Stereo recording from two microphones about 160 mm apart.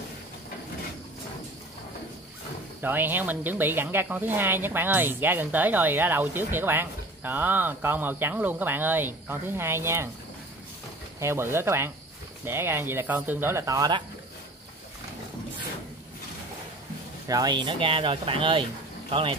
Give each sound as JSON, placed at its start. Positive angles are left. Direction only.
{"t": 2.8, "sound": "speech", "side_deg": -10}
{"t": 11.1, "sound": "speech", "side_deg": -15}
{"t": 17.3, "sound": "speech", "side_deg": -25}